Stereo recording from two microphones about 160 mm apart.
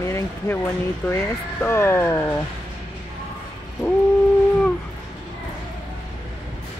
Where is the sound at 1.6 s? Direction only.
15° left (ahead or behind).